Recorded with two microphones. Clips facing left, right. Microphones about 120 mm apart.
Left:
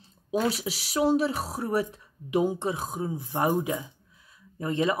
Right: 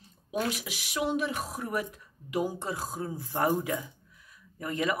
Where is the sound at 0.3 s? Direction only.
35° left (ahead or behind).